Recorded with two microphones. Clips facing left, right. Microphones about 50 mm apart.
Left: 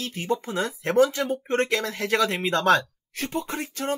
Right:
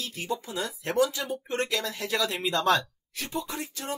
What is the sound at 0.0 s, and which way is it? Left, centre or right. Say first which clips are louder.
Speech: left 5 dB; left.